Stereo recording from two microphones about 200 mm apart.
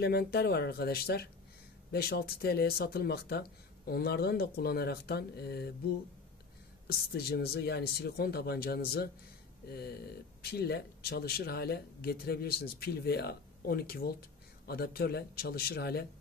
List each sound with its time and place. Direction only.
0.0 s speech: 50° left (ahead or behind)
6.9 s speech: 50° left (ahead or behind)